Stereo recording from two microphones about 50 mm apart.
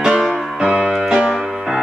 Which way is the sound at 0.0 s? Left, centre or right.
Centre.